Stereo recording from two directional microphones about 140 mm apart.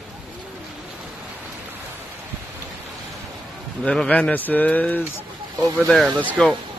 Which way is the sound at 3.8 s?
5° left (ahead or behind).